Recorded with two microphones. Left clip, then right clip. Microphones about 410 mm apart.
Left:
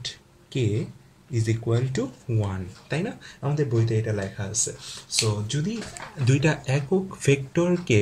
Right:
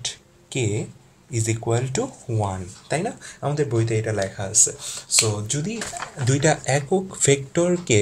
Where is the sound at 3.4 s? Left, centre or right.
Right.